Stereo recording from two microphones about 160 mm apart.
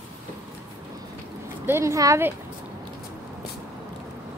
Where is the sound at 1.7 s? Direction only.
15° right (ahead or behind).